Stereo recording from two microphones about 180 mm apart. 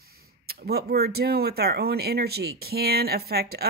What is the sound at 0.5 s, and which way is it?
Speech, 60° right (ahead or behind).